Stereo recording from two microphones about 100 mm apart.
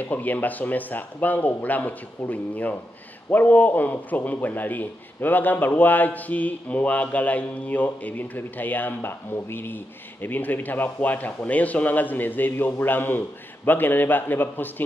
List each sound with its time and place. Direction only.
0.0 s a man's voice: 15° left (ahead or behind)